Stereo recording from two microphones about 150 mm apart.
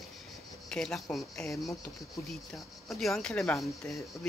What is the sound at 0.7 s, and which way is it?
Speech, 5° left (ahead or behind).